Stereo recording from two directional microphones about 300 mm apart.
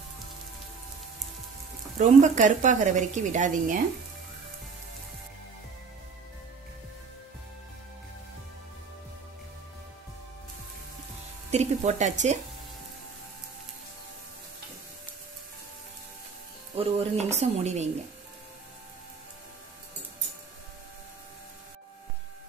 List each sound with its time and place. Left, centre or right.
2.0 s a woman's voice: right
11.5 s speech: right
16.7 s a woman's voice: right